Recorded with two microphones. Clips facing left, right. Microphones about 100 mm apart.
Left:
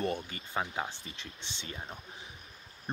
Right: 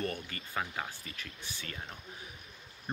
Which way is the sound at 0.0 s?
20° left (ahead or behind).